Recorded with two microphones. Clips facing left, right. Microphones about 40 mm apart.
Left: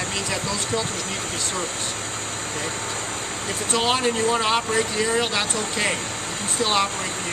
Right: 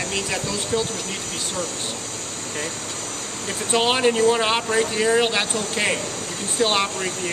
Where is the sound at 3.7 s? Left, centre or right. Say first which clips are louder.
Right 3 dB; centre.